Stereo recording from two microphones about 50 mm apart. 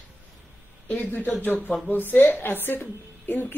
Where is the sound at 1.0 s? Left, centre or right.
Left.